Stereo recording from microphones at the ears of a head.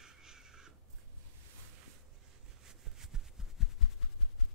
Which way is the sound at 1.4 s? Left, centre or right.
Right.